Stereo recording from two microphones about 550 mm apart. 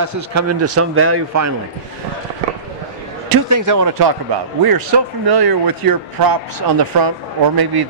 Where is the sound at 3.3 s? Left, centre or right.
Right.